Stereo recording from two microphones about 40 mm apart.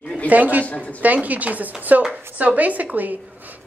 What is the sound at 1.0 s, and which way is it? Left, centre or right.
A woman's voice, right.